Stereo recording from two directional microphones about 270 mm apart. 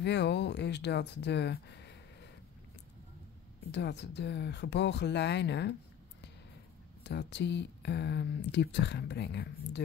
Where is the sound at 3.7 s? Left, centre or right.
Left.